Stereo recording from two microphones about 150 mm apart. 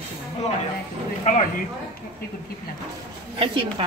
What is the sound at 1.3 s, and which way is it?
Speech, 60° left (ahead or behind).